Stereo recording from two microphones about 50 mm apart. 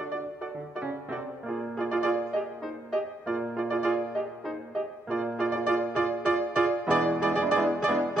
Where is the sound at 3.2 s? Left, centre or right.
Centre.